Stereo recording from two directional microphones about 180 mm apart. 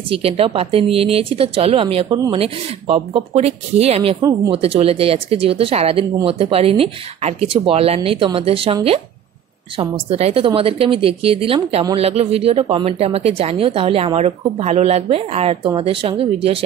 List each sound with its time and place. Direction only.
0.1 s a woman's voice: 30° right (ahead or behind)
4.2 s speech: 20° right (ahead or behind)
4.6 s a woman's voice: 35° right (ahead or behind)
9.8 s a woman's voice: 35° right (ahead or behind)